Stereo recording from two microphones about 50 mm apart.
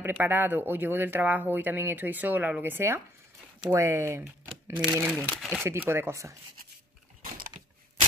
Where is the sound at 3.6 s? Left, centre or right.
Right.